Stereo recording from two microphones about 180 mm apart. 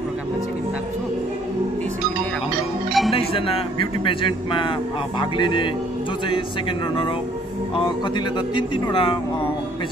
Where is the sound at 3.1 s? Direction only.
30° left (ahead or behind).